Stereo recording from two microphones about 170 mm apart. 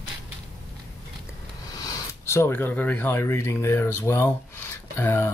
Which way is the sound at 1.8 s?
20° left (ahead or behind).